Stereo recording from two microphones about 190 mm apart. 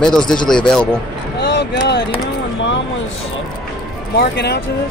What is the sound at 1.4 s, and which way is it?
Speech, 65° left (ahead or behind).